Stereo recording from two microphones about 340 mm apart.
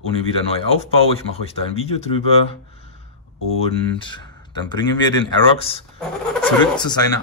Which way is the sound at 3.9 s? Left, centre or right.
Centre.